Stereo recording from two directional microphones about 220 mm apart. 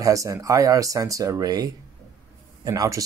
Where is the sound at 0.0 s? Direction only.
15° right (ahead or behind).